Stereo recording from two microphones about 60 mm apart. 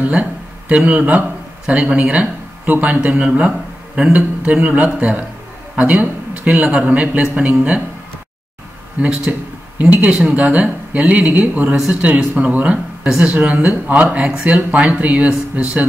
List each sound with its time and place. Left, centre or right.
0.0 s a man's voice: right
9.3 s a man's voice: right